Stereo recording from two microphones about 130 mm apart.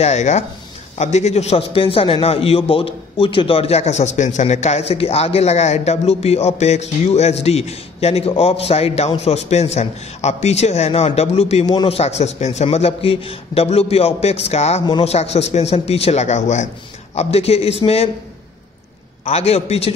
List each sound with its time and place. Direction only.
0.0 s a man's voice: 60° left (ahead or behind)
17.1 s a man's voice: 55° left (ahead or behind)
19.3 s a man's voice: 55° left (ahead or behind)